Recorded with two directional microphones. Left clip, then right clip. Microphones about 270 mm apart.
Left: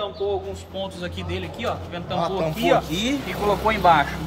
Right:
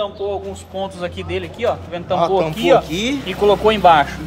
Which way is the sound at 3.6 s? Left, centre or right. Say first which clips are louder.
Right 4 dB; right.